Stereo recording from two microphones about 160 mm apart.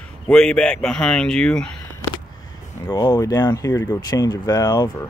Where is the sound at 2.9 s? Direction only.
20° left (ahead or behind).